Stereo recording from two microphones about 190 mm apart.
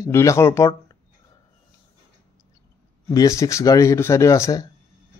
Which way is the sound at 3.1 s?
15° left (ahead or behind).